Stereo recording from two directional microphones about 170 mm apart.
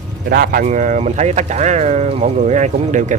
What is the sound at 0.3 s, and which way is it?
Speech, 65° right (ahead or behind).